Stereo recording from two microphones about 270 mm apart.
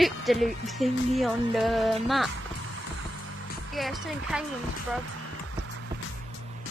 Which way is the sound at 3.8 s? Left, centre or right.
Centre.